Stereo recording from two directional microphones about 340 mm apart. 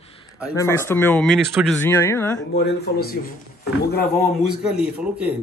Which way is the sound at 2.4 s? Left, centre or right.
Left.